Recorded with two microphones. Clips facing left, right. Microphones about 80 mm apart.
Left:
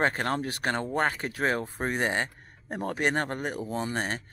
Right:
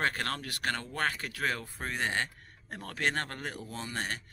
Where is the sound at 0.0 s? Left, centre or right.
Left.